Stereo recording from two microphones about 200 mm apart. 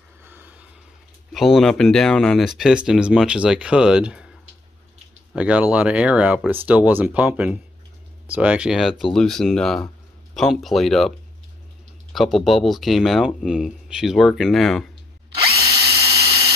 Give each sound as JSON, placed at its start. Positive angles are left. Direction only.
{"t": 0.2, "sound": "a sound", "side_deg": -10}
{"t": 1.3, "sound": "speech", "side_deg": 0}
{"t": 5.3, "sound": "speech", "side_deg": -5}
{"t": 15.5, "sound": "drill", "side_deg": -30}